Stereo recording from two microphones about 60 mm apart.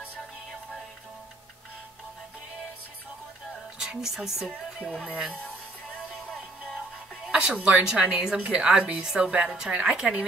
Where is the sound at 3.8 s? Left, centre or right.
Centre.